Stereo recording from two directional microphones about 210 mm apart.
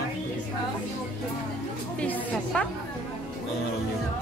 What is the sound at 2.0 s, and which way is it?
Music, 5° left (ahead or behind).